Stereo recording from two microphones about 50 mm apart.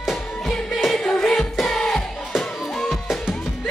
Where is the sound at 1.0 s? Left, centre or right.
Centre.